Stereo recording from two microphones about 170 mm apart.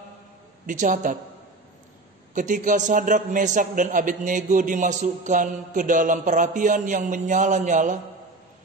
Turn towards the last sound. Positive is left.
turn(degrees=-45)  # may be behind; listen again after turning